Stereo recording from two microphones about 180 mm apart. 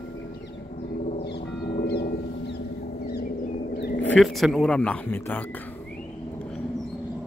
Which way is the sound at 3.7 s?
65° left (ahead or behind).